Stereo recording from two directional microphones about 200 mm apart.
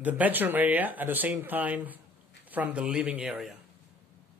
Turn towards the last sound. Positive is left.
turn(degrees=0)  # may be behind; listen again after turning